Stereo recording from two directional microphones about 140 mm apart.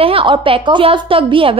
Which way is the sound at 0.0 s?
40° right (ahead or behind).